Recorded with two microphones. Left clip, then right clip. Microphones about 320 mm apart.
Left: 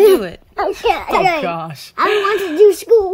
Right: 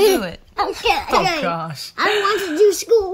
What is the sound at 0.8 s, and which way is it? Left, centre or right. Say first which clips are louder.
Speech: left 3 dB; left.